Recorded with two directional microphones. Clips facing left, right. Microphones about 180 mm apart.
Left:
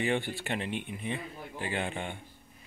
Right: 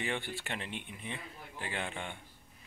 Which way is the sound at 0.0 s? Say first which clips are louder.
Left 7 dB; 10° left (ahead or behind).